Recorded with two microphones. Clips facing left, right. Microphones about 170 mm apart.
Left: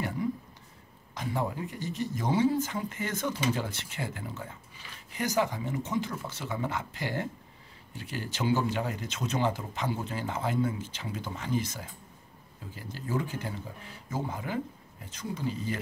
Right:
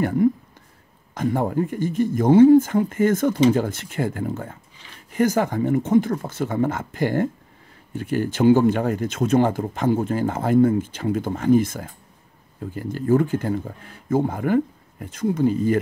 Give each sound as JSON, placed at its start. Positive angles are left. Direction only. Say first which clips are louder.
{"t": 0.0, "sound": "speech", "louder": "right 12 dB", "side_deg": -55}